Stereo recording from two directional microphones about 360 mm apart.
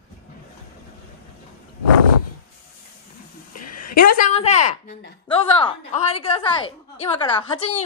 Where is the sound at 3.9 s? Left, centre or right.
Left.